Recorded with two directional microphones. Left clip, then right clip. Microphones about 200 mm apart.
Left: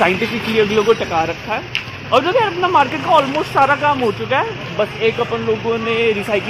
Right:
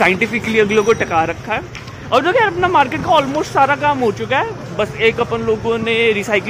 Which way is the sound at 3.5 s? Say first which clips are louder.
Right 1 dB; 35° right (ahead or behind).